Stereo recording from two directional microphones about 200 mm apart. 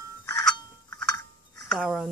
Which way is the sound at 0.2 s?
20° left (ahead or behind).